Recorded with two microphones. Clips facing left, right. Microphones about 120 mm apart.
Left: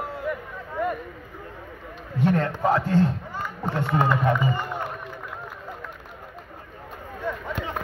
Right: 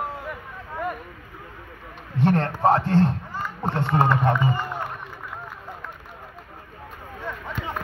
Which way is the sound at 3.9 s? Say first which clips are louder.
Right 1 dB; 30° right (ahead or behind).